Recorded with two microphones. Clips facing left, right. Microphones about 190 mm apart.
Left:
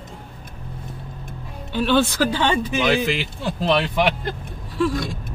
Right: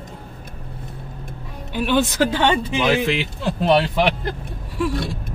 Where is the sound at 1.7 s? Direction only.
15° right (ahead or behind).